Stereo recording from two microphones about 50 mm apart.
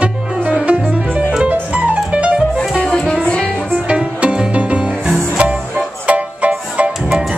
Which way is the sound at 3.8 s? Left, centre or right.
Right.